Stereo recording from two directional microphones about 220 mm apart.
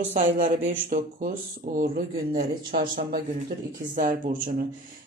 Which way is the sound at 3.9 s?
40° right (ahead or behind).